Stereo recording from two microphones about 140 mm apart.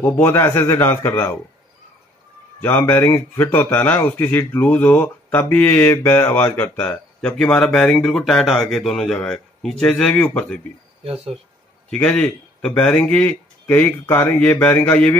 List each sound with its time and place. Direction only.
0.0 s speech: 15° left (ahead or behind)
2.6 s speech: 15° left (ahead or behind)
11.9 s speech: 10° left (ahead or behind)